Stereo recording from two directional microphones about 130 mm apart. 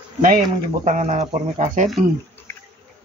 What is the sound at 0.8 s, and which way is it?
Speech, 70° right (ahead or behind).